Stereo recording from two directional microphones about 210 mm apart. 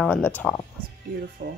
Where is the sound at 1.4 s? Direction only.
45° right (ahead or behind).